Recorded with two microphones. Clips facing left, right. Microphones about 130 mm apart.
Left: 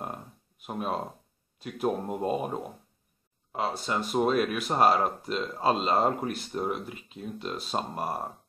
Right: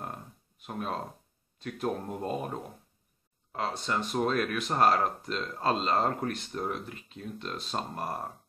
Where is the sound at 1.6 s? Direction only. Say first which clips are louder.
Left 3 dB; 10° left (ahead or behind).